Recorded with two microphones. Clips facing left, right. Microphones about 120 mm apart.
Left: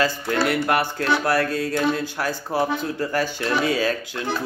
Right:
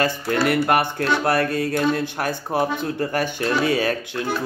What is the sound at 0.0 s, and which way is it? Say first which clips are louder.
Speech: right 1 dB; 25° right (ahead or behind).